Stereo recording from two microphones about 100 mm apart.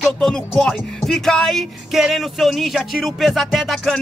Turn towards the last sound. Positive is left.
turn(degrees=0)  # may be behind; listen again after turning